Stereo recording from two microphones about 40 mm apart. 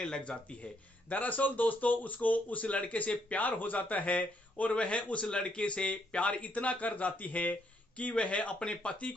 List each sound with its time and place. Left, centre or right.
0.0 s speech: centre
1.0 s a man's voice: left